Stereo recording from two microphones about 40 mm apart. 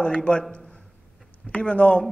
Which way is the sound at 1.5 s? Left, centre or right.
Left.